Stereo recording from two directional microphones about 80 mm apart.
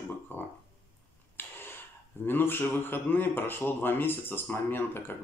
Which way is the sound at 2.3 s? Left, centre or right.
Left.